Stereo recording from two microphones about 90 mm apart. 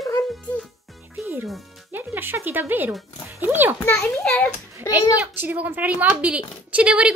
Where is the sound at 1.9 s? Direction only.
25° right (ahead or behind).